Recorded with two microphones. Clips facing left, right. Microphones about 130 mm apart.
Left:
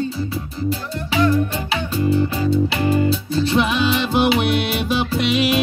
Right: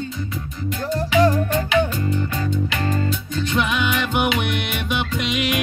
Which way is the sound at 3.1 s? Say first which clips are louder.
Left 6 dB; 35° left (ahead or behind).